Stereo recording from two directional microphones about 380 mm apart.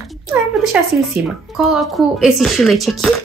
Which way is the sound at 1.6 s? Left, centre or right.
Centre.